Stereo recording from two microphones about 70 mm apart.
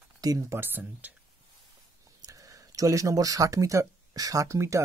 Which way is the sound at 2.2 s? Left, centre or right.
Right.